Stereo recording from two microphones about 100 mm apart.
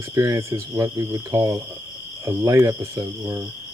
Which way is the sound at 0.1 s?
30° right (ahead or behind).